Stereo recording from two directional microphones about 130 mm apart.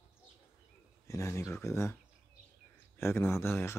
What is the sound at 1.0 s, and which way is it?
Speech, 25° left (ahead or behind).